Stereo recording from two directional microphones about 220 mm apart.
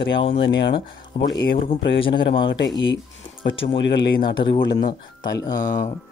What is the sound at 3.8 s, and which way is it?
Speech, 55° left (ahead or behind).